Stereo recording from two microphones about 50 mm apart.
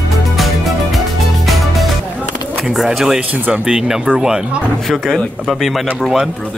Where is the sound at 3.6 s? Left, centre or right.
Centre.